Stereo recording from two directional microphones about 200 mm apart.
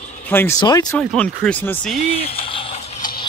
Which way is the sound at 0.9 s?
5° left (ahead or behind).